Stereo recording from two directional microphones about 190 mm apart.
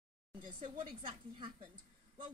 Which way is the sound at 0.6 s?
30° right (ahead or behind).